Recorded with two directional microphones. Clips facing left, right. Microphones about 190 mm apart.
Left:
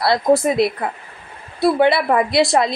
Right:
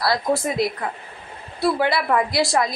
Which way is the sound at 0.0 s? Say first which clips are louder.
Left 6 dB; 25° left (ahead or behind).